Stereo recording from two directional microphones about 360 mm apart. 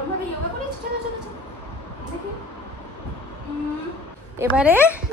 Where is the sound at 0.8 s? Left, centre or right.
Right.